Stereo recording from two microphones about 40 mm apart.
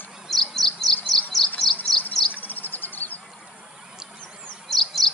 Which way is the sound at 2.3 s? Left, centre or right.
Left.